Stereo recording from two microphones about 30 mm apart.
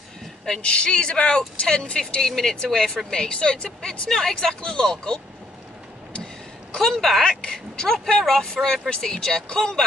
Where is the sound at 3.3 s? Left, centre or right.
Left.